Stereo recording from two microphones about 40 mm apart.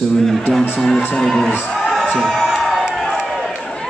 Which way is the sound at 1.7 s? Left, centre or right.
Centre.